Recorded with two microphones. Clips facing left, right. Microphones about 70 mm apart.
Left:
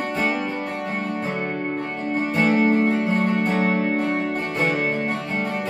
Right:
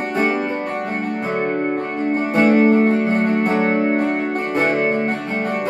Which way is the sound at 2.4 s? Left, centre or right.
Right.